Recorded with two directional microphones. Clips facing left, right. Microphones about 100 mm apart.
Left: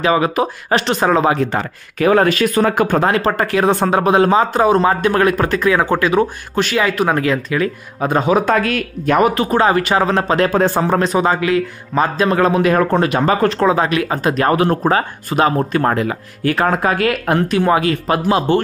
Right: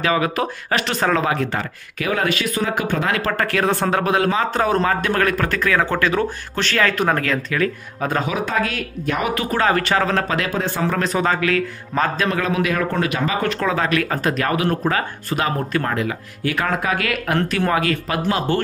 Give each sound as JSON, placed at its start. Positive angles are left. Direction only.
{"t": 0.0, "sound": "speech", "side_deg": 25}
{"t": 2.0, "sound": "speech", "side_deg": 40}
{"t": 3.2, "sound": "speech", "side_deg": 25}
{"t": 8.5, "sound": "speech", "side_deg": 55}
{"t": 9.2, "sound": "speech", "side_deg": 30}
{"t": 10.2, "sound": "speech", "side_deg": 35}
{"t": 10.8, "sound": "speech", "side_deg": 25}
{"t": 12.3, "sound": "speech", "side_deg": 35}
{"t": 13.5, "sound": "speech", "side_deg": 25}
{"t": 17.5, "sound": "speech", "side_deg": 20}